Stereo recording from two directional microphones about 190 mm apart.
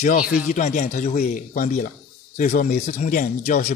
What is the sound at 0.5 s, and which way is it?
A man's voice, 40° left (ahead or behind).